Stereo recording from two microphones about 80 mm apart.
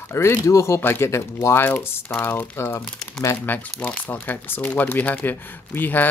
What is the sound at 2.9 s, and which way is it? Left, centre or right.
Speech, centre.